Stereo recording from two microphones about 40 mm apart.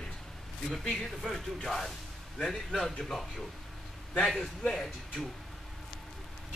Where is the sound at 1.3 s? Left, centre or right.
Centre.